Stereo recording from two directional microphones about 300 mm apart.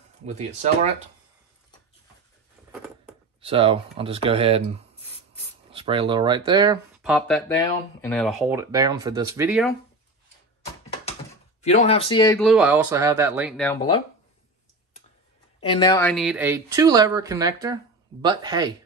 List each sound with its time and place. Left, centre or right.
0.2 s speech: right
3.3 s speech: centre
7.0 s speech: centre
11.6 s speech: left
12.4 s speech: centre
15.6 s speech: centre